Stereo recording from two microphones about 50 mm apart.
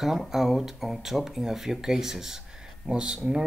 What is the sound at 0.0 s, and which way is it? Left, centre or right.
Speech, centre.